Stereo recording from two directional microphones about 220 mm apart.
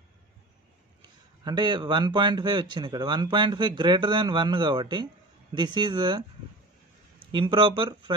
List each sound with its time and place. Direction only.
1.4 s speech: 20° right (ahead or behind)
7.2 s speech: 20° right (ahead or behind)